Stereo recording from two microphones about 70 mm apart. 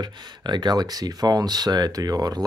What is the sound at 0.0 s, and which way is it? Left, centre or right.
Speech, right.